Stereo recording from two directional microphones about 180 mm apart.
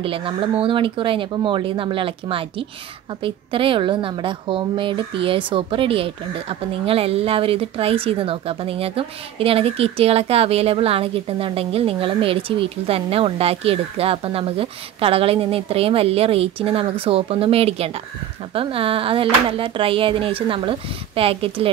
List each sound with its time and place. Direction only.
0.0 s a woman's voice: 30° right (ahead or behind)